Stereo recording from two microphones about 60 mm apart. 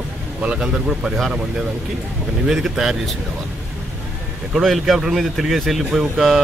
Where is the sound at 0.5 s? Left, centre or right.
Centre.